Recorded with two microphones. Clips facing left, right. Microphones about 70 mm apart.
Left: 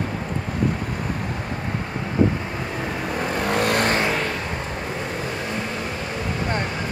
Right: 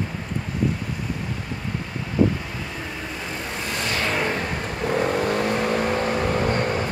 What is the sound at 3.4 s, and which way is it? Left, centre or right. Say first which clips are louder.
Vehicle: left 10 dB; left.